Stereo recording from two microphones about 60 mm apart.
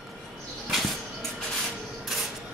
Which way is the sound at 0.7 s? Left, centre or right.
Centre.